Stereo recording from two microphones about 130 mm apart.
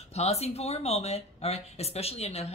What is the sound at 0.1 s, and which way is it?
Speech, 55° left (ahead or behind).